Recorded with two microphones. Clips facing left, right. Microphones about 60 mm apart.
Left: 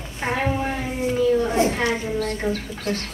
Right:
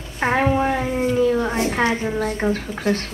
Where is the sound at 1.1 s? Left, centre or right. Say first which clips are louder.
Left 1 dB; right.